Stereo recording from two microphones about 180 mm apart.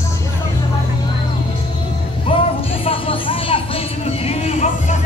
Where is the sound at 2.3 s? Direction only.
30° left (ahead or behind).